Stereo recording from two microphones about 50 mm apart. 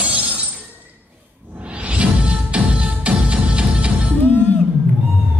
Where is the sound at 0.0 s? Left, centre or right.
Centre.